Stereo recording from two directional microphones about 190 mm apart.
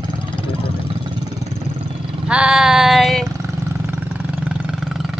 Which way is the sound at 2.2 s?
5° right (ahead or behind).